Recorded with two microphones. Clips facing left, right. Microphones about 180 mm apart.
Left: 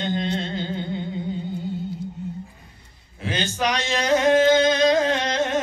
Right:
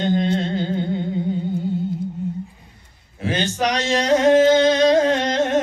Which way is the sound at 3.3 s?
40° right (ahead or behind).